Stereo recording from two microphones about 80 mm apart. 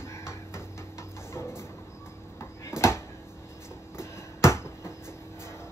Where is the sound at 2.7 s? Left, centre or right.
Left.